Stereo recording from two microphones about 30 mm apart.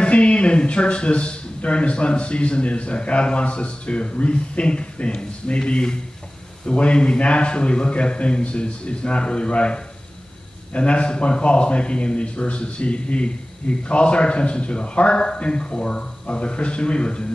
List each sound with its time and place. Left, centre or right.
0.0 s a man's voice: left
6.6 s a man's voice: left